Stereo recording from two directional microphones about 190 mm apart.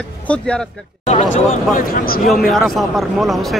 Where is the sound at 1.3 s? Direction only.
50° left (ahead or behind).